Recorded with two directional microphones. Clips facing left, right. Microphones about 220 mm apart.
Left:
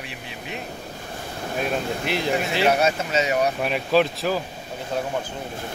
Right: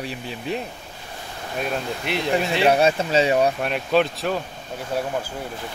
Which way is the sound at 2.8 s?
30° right (ahead or behind).